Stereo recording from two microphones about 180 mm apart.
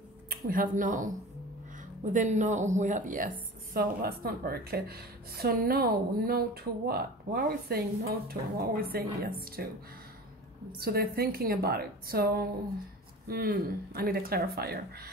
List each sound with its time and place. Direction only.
0.3 s speech: 50° right (ahead or behind)
2.1 s a woman's voice: 45° right (ahead or behind)
10.8 s a woman's voice: 60° right (ahead or behind)